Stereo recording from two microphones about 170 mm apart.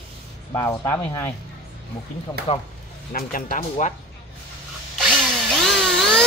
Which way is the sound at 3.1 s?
55° left (ahead or behind).